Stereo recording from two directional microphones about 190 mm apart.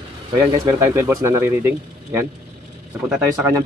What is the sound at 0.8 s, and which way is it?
Speech, 15° right (ahead or behind).